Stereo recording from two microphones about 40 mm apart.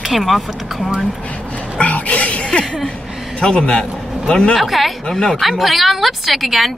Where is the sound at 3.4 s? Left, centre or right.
Left.